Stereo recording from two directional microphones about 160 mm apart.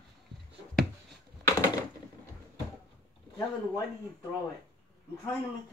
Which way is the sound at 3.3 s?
20° left (ahead or behind).